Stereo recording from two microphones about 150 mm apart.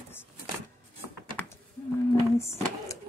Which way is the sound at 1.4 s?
10° left (ahead or behind).